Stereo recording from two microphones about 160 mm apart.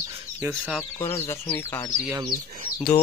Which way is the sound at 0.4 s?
Centre (ahead or behind).